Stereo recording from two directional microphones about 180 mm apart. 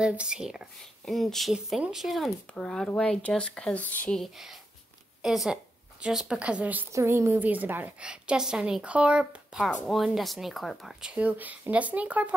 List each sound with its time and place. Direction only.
0.0 s a woman's voice: 5° right (ahead or behind)